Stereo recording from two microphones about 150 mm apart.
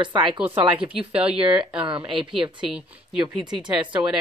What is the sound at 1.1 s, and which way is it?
Speech, 5° right (ahead or behind).